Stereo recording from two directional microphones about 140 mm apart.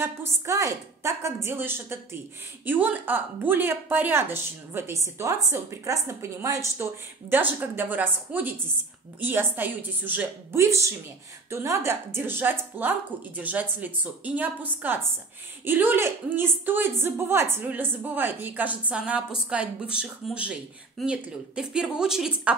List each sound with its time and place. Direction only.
0.0 s speech: 20° right (ahead or behind)